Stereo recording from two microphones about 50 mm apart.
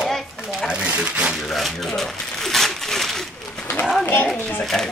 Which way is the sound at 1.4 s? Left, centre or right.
Centre.